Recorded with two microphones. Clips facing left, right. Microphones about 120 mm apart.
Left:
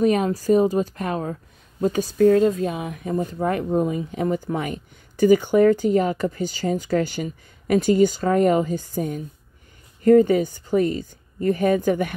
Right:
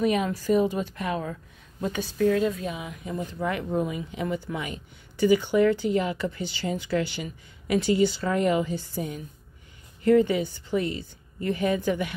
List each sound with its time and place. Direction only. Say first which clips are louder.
0.0 s a woman's voice: left 5 dB; 40° left (ahead or behind)